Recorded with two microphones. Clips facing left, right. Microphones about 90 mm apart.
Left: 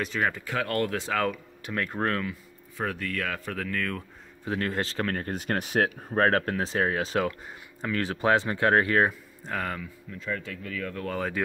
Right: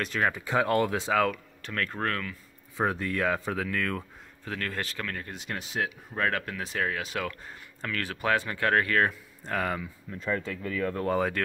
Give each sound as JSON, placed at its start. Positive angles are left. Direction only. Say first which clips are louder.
{"t": 0.0, "sound": "speech", "louder": "even", "side_deg": 0}
{"t": 0.3, "sound": "speech", "louder": "right 4 dB", "side_deg": -20}
{"t": 1.6, "sound": "speech", "louder": "left 3 dB", "side_deg": 15}
{"t": 2.8, "sound": "speech", "louder": "right 3 dB", "side_deg": -25}
{"t": 3.5, "sound": "speech", "louder": "right 1 dB", "side_deg": -5}
{"t": 4.5, "sound": "speech", "louder": "left 5 dB", "side_deg": 25}
{"t": 9.5, "sound": "speech", "louder": "right 2 dB", "side_deg": 0}
{"t": 10.1, "sound": "speech", "louder": "right 3 dB", "side_deg": -35}